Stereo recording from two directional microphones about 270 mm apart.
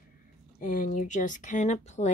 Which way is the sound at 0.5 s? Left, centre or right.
Left.